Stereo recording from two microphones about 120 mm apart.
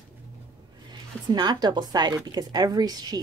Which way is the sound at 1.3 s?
35° right (ahead or behind).